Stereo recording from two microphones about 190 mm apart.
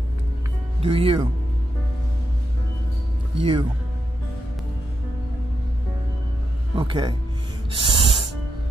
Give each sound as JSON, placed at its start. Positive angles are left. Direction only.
{"t": 0.8, "sound": "a man's voice", "side_deg": -30}
{"t": 3.3, "sound": "a man's voice", "side_deg": -30}
{"t": 6.7, "sound": "a man's voice", "side_deg": -25}
{"t": 7.8, "sound": "music", "side_deg": -25}